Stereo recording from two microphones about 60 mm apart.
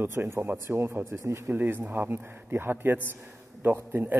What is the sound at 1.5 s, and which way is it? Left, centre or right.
A man's voice, right.